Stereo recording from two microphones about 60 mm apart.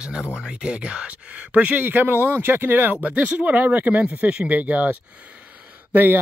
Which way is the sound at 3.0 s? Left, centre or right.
Right.